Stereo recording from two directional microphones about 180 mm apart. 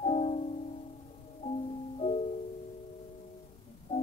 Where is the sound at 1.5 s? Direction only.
35° left (ahead or behind).